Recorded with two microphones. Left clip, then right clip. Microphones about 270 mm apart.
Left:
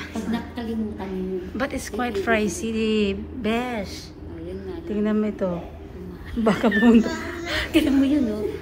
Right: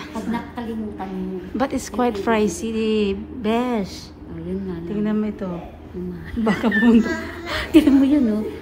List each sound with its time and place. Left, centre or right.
0.1 s a sound: centre
1.6 s a woman's voice: centre
4.9 s speech: centre
7.5 s a woman's voice: right